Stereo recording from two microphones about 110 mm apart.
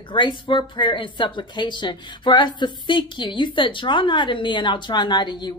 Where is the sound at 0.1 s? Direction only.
45° left (ahead or behind).